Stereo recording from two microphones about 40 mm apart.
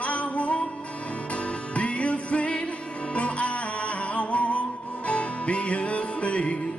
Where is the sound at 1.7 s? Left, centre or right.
Left.